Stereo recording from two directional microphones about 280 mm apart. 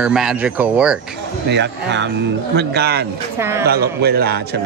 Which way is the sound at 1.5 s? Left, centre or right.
Right.